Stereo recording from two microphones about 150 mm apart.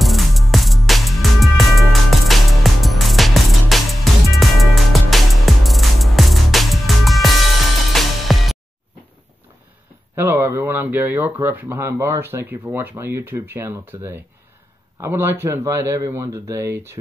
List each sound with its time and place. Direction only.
0.0 s music: centre (ahead or behind)
10.1 s speech: 15° right (ahead or behind)